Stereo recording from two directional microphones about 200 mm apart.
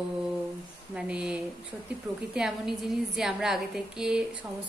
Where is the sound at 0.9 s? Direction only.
5° right (ahead or behind).